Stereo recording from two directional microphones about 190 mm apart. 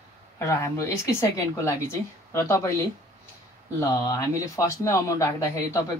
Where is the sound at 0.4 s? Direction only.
15° left (ahead or behind).